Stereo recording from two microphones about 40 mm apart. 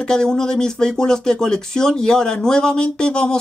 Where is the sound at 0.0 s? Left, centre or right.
Centre.